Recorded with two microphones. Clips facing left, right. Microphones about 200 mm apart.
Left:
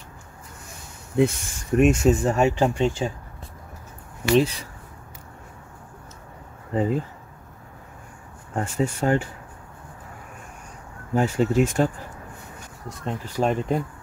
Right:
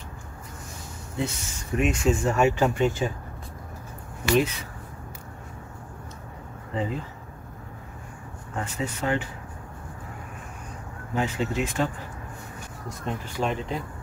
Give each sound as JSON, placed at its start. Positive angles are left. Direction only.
{"t": 1.1, "sound": "speech", "side_deg": 55}
{"t": 4.4, "sound": "speech", "side_deg": 35}
{"t": 6.7, "sound": "speech", "side_deg": 45}
{"t": 8.5, "sound": "speech", "side_deg": 45}
{"t": 11.1, "sound": "speech", "side_deg": 45}
{"t": 13.4, "sound": "speech", "side_deg": 45}